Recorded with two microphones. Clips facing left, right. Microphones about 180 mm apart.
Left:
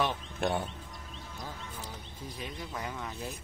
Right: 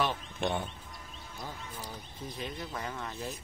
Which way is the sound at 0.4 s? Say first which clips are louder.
Left 2 dB; 5° left (ahead or behind).